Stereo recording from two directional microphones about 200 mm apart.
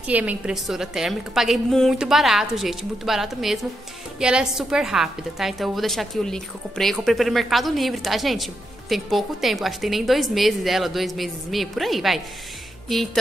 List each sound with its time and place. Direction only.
0.0 s a woman's voice: 5° right (ahead or behind)